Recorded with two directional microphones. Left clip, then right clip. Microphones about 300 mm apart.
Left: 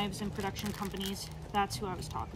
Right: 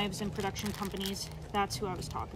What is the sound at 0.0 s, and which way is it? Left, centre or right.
Speech, centre.